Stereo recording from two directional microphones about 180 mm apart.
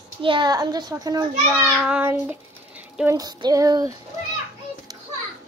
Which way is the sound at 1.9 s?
10° right (ahead or behind).